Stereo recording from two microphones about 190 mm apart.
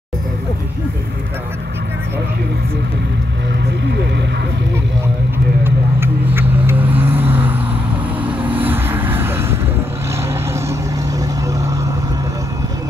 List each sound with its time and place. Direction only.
5.6 s vehicle: 10° right (ahead or behind)
10.7 s vehicle: 15° right (ahead or behind)